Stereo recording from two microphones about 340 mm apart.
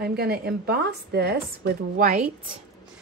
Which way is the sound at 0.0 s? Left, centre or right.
Right.